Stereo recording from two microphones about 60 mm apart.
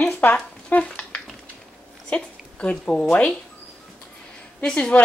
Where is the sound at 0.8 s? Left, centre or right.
Left.